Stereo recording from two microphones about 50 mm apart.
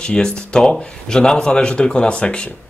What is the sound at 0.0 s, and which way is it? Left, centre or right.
Speech, centre.